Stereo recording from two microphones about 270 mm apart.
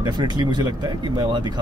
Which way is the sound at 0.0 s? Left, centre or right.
Centre.